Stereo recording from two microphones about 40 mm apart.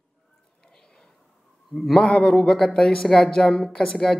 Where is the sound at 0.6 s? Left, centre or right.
Centre.